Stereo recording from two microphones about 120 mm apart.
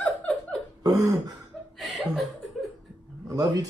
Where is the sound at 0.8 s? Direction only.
30° right (ahead or behind).